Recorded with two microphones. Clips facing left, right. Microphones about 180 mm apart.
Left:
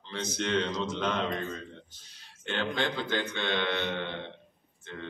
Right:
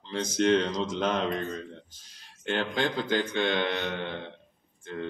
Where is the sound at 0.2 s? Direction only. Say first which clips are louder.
Right 6 dB; 45° right (ahead or behind).